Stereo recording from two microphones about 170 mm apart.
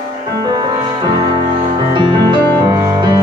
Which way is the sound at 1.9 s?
25° right (ahead or behind).